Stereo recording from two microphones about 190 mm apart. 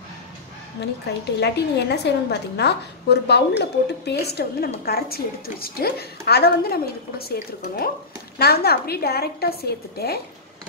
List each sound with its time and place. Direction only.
1.4 s a woman's voice: 60° left (ahead or behind)